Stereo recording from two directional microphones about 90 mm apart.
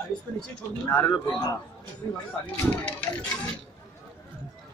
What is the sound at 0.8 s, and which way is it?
Speech, 25° left (ahead or behind).